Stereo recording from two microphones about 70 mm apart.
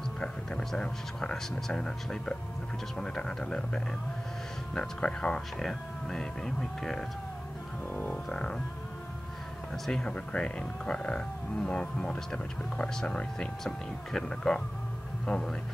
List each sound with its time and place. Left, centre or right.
0.2 s speech: centre
7.9 s music: centre
9.8 s speech: centre